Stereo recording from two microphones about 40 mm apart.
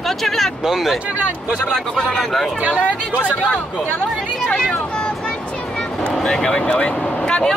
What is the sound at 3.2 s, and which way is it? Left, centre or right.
Speech, left.